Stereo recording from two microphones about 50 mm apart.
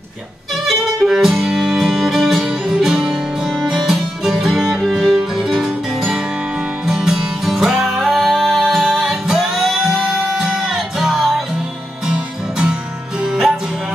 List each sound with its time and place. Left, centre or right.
1.0 s music: centre
6.9 s music: centre
12.1 s music: centre